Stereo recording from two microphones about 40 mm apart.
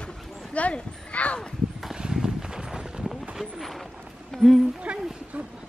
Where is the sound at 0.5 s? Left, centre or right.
Left.